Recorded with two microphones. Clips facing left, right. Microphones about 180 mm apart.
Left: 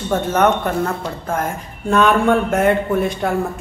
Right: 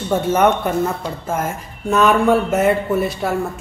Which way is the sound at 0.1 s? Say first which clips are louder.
Right 1 dB; 10° right (ahead or behind).